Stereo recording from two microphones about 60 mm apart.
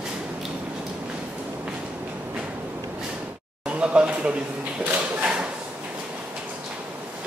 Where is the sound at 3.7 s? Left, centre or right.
Centre.